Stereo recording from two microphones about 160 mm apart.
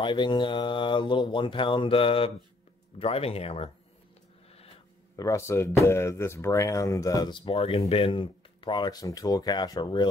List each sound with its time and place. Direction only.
0.0 s speech: 30° left (ahead or behind)
5.1 s speech: 20° left (ahead or behind)